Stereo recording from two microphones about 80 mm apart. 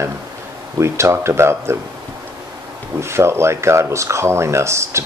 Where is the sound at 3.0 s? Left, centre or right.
Right.